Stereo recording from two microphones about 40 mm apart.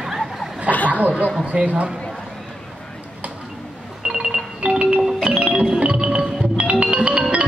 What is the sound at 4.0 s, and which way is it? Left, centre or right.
Ringtone, right.